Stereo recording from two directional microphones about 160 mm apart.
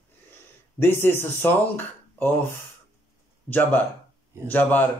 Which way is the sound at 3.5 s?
10° left (ahead or behind).